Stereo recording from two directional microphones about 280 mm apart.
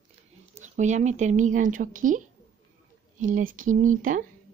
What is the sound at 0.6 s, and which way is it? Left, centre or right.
Speech, right.